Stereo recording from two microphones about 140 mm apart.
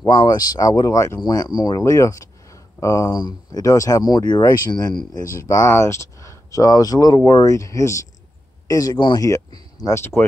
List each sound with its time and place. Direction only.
0.0 s speech: 30° left (ahead or behind)